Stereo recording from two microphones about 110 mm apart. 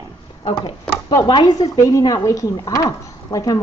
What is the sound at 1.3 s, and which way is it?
A woman's voice, 40° left (ahead or behind).